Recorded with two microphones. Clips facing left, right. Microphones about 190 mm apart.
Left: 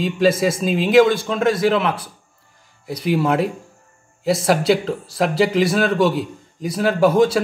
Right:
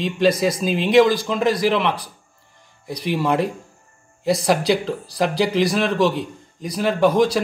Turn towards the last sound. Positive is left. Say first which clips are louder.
# left 2 dB
turn(degrees=5)  # may be behind; listen again after turning